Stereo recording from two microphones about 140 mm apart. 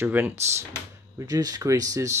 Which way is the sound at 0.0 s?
15° right (ahead or behind).